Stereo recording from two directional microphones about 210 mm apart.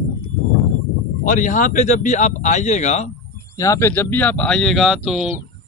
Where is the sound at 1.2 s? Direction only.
35° left (ahead or behind).